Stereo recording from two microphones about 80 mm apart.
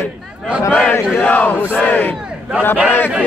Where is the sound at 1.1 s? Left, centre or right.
Centre.